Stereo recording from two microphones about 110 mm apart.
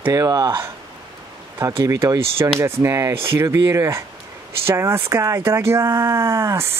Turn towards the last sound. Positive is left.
turn(degrees=-25)  # may be behind; listen again after turning